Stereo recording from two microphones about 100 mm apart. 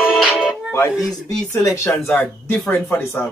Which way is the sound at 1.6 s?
30° left (ahead or behind).